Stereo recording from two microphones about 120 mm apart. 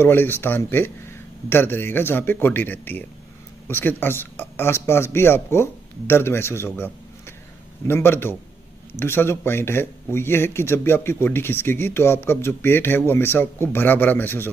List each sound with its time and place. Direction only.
0.0 s speech: 15° left (ahead or behind)